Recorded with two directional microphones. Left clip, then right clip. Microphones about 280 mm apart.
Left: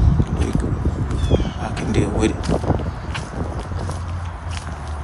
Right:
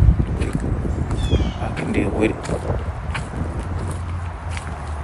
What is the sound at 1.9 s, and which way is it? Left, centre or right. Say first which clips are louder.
Speech: even; centre.